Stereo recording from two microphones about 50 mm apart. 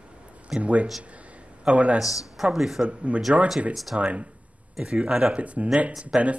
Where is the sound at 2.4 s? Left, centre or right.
Centre.